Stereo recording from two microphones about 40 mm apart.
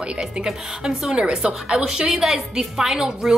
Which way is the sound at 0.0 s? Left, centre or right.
Right.